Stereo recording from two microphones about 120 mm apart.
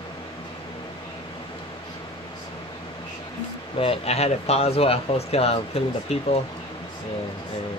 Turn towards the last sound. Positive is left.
turn(degrees=55)  # may be behind; listen again after turning